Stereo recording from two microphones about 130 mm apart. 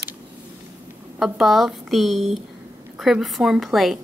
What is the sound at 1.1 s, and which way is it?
Speech, centre (ahead or behind).